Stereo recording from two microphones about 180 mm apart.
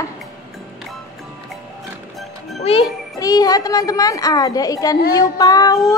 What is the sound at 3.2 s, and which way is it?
Speech, 20° left (ahead or behind).